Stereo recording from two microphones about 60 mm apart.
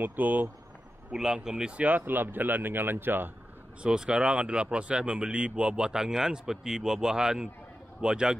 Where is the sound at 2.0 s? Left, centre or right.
Right.